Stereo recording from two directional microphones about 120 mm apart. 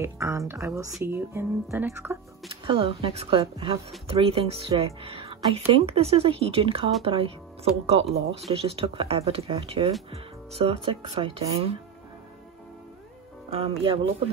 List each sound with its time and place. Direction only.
0.0 s speech: 25° right (ahead or behind)
2.5 s speech: 50° right (ahead or behind)
13.5 s speech: 55° right (ahead or behind)